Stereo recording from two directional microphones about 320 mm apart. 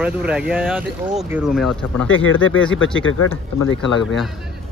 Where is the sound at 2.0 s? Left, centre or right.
Left.